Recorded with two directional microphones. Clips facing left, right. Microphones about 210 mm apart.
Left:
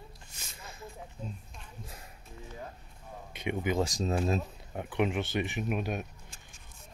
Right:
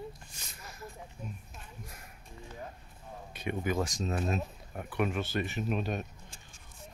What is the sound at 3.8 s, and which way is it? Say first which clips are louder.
Speech: left 3 dB; 30° left (ahead or behind).